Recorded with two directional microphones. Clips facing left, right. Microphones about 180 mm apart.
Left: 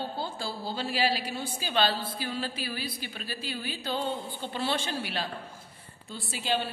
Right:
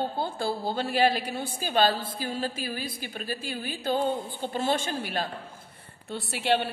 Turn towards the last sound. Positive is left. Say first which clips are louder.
# right 5 dB
turn(degrees=-65)  # may be behind; listen again after turning